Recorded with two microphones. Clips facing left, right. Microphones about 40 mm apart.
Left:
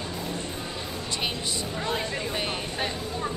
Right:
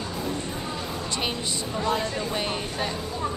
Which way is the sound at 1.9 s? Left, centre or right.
Centre.